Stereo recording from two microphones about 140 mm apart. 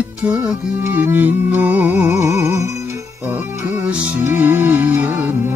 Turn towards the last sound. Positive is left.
turn(degrees=-15)  # may be behind; listen again after turning